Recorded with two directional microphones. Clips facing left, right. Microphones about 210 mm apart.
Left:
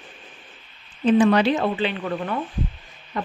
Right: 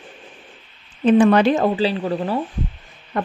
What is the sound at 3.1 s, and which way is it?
Owl, 55° right (ahead or behind).